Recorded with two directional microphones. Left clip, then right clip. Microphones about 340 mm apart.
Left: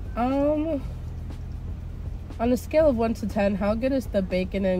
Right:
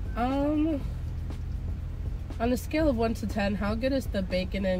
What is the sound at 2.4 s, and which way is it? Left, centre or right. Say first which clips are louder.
Speech: left 6 dB; centre.